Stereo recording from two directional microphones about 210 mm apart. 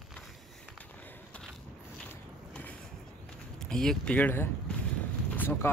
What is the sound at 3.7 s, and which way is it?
Speech, 5° left (ahead or behind).